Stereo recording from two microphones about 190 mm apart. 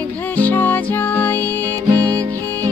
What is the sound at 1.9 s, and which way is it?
Music, 20° right (ahead or behind).